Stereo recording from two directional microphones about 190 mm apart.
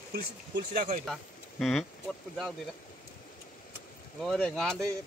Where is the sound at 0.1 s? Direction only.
50° right (ahead or behind).